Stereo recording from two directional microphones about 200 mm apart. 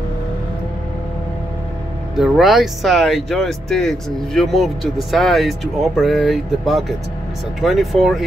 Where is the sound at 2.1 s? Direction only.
Centre (ahead or behind).